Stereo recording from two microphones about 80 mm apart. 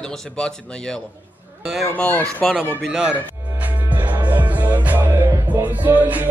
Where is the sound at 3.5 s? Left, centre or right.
Right.